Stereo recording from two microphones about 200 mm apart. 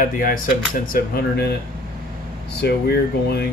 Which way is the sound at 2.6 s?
55° left (ahead or behind).